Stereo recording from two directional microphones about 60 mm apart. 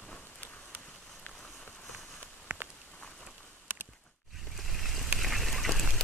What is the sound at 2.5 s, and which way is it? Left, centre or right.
Walk, right.